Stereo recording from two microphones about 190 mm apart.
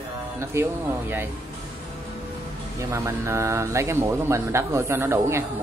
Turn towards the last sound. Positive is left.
turn(degrees=-15)  # may be behind; listen again after turning